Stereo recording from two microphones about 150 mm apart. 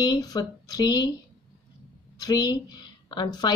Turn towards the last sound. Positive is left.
turn(degrees=25)  # may be behind; listen again after turning